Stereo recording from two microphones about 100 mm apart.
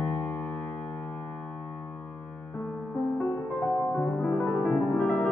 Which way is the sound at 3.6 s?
15° left (ahead or behind).